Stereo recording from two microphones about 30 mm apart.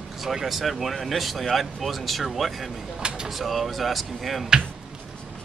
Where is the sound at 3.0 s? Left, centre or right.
Right.